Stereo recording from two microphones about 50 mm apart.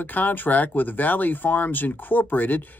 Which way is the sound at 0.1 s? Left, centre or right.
Left.